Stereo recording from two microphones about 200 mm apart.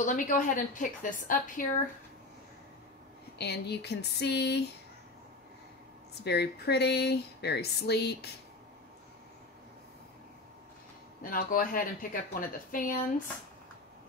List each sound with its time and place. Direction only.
0.0 s a woman's voice: 40° left (ahead or behind)
3.3 s speech: 55° left (ahead or behind)
6.2 s speech: 55° left (ahead or behind)
11.2 s a woman's voice: 45° left (ahead or behind)